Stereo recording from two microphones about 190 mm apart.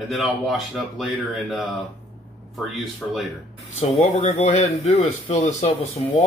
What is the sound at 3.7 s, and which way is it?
Speech, 35° left (ahead or behind).